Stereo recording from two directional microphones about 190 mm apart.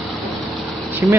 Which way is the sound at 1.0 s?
15° right (ahead or behind).